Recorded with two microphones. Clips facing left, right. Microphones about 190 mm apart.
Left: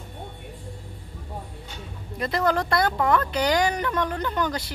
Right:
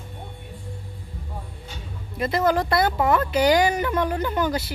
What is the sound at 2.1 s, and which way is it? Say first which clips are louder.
Speech: right 2 dB; centre (ahead or behind).